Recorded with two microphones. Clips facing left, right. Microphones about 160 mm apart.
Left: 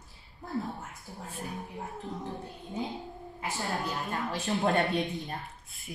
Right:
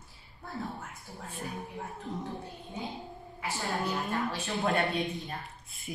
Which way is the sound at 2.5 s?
Centre (ahead or behind).